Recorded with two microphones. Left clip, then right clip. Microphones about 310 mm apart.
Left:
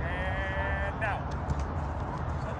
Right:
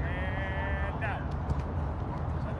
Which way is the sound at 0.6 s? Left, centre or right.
Left.